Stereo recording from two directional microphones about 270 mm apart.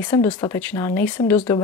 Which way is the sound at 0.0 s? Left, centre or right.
Centre.